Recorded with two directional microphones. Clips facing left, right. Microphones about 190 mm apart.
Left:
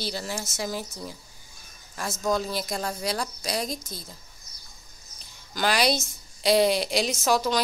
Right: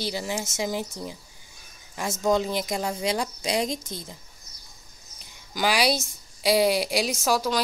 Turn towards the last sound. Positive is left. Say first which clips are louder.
# even
turn(degrees=-5)  # may be behind; listen again after turning